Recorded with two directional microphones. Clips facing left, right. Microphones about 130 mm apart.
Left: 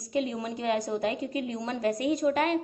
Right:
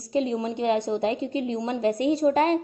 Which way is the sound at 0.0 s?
30° right (ahead or behind).